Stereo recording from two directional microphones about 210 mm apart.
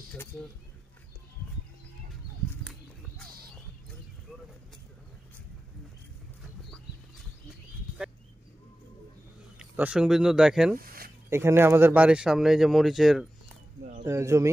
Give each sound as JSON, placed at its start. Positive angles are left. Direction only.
{"t": 0.1, "sound": "speech", "side_deg": 5}
{"t": 2.6, "sound": "horse", "side_deg": 5}
{"t": 9.6, "sound": "speech", "side_deg": -5}
{"t": 10.8, "sound": "a sound", "side_deg": -45}
{"t": 11.2, "sound": "speech", "side_deg": -10}
{"t": 14.0, "sound": "speech", "side_deg": -15}